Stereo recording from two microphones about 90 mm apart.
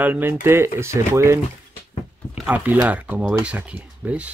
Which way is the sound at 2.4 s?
20° right (ahead or behind).